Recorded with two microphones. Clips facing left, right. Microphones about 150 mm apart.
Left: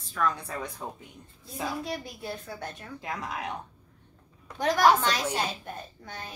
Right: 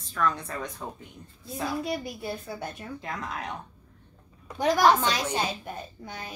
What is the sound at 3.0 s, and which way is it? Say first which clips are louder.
Speech: left 2 dB; 10° left (ahead or behind).